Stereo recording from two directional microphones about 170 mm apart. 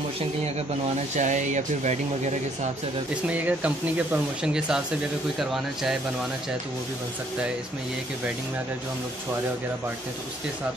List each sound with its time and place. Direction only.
1.1 s speech: 45° right (ahead or behind)
3.3 s speech: 10° right (ahead or behind)